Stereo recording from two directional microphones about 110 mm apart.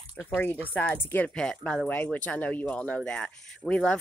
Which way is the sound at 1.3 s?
5° left (ahead or behind).